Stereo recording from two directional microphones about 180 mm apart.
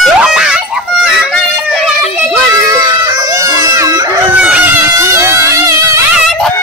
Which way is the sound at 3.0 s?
20° right (ahead or behind).